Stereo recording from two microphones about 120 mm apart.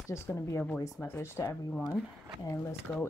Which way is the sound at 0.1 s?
20° left (ahead or behind).